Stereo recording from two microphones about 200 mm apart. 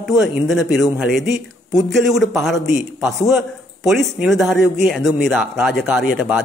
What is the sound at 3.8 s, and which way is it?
Speech, centre (ahead or behind).